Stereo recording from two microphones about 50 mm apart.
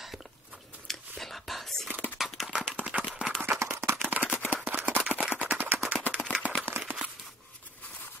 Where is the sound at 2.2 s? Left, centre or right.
Centre.